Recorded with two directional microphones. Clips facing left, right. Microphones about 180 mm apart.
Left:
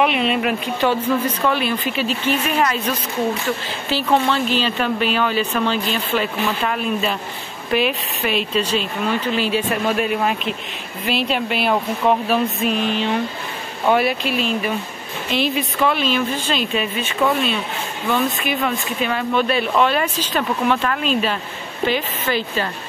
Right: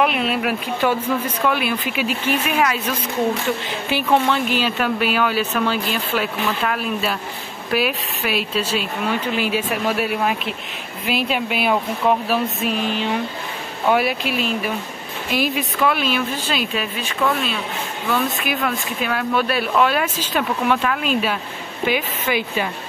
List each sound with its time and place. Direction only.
0.0 s speech: centre (ahead or behind)
15.3 s speech: 5° right (ahead or behind)